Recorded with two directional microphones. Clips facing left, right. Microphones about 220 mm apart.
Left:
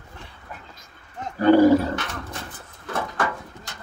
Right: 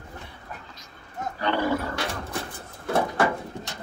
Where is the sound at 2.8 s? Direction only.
30° right (ahead or behind).